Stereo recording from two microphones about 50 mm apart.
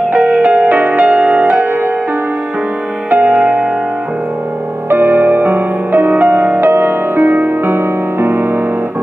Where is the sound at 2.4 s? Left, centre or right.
Right.